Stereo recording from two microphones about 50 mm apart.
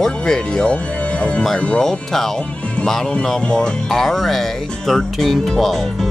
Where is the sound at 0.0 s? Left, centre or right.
Centre.